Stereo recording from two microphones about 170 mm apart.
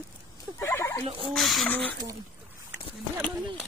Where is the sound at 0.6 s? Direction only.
15° left (ahead or behind).